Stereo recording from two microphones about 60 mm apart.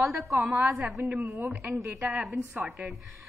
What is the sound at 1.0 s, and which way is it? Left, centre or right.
Speech, right.